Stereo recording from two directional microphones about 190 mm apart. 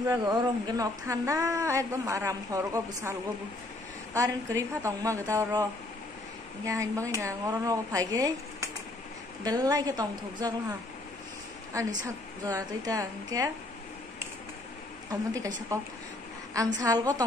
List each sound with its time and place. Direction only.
0.0 s a woman's voice: 20° right (ahead or behind)
11.7 s a woman's voice: 15° right (ahead or behind)
15.0 s a woman's voice: 20° right (ahead or behind)
16.8 s a woman's voice: 20° right (ahead or behind)